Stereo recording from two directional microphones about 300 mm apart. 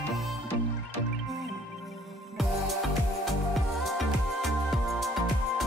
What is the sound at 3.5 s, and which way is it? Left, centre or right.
Music, centre.